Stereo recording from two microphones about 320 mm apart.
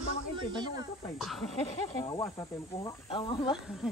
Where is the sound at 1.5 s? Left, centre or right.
Centre.